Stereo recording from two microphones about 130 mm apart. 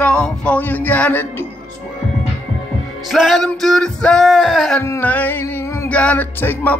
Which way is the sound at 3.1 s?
Centre (ahead or behind).